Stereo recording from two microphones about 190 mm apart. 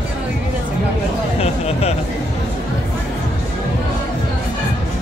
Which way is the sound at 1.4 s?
35° left (ahead or behind).